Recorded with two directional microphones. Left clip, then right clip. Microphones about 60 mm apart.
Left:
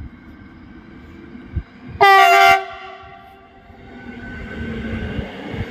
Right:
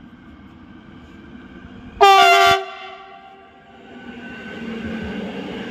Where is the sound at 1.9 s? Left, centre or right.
Centre.